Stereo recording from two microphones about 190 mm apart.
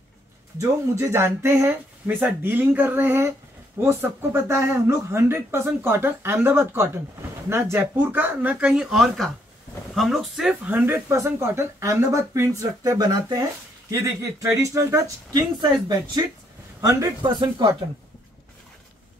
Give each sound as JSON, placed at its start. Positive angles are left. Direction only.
{"t": 0.6, "sound": "speech", "side_deg": -15}